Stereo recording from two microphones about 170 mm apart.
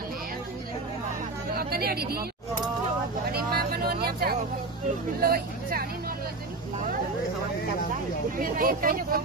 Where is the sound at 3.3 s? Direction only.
65° right (ahead or behind).